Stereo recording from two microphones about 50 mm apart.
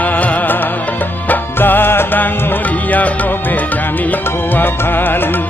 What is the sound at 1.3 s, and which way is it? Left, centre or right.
Music, left.